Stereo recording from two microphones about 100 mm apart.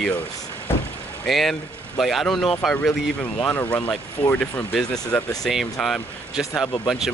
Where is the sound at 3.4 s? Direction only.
20° left (ahead or behind); by 7.1 s 5° right (ahead or behind).